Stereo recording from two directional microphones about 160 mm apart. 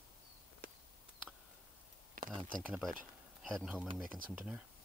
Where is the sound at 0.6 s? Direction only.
65° right (ahead or behind).